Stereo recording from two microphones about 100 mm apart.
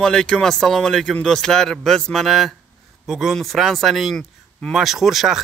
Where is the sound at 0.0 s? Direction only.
5° left (ahead or behind).